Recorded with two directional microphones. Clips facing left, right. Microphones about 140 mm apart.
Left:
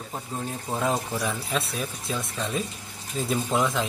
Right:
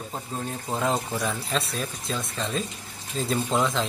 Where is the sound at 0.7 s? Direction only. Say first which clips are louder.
Even; 5° left (ahead or behind).